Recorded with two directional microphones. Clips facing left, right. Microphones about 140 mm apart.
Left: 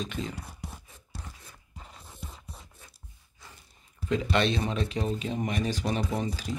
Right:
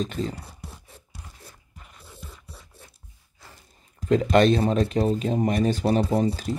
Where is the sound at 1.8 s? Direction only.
30° left (ahead or behind).